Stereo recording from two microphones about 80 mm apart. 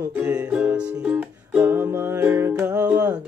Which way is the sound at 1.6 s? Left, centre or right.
Right.